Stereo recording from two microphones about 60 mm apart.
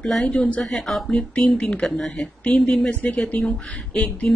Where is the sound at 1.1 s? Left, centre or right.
Centre.